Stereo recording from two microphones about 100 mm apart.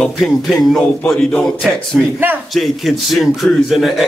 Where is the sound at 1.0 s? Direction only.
10° left (ahead or behind).